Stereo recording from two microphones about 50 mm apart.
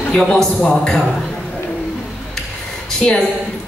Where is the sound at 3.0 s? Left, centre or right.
Centre.